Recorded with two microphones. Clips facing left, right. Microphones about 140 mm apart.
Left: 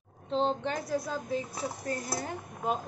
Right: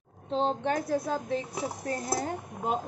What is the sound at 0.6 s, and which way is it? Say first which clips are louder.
Speech: right 4 dB; 60° right (ahead or behind).